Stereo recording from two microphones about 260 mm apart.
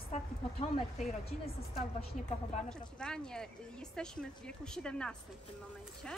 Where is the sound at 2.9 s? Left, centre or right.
Centre.